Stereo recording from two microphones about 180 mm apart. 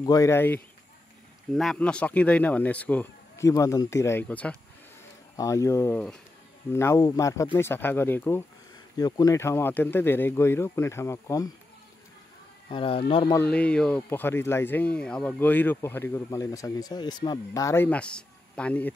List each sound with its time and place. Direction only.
0.0 s speech: 20° left (ahead or behind)
1.5 s speech: centre (ahead or behind)
5.3 s speech: 20° left (ahead or behind)
12.6 s speech: 30° left (ahead or behind)
13.3 s speech: 10° left (ahead or behind)